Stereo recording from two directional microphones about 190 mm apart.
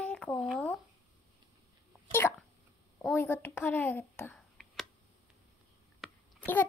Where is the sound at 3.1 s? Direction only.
10° left (ahead or behind).